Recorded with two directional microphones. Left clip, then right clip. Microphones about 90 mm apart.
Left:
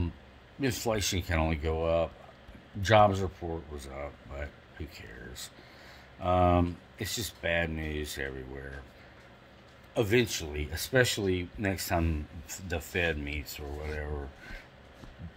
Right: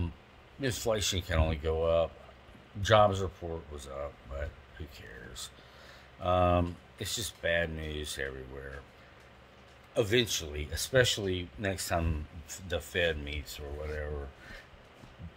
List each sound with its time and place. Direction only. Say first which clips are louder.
0.6 s speech: left 1 dB; 5° right (ahead or behind)
6.2 s speech: left 1 dB; 20° right (ahead or behind)
7.0 s speech: even; 5° right (ahead or behind)
9.9 s speech: left 1 dB; 5° right (ahead or behind)